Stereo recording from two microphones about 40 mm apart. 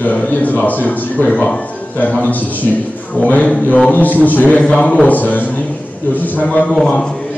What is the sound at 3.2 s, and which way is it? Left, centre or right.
A man's voice, left.